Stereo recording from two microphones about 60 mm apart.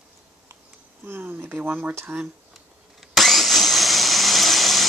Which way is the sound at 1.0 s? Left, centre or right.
Right.